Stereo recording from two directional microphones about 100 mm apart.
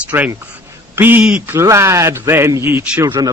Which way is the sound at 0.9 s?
20° right (ahead or behind).